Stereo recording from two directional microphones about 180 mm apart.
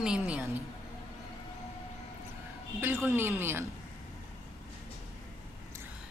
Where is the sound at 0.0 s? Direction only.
5° right (ahead or behind).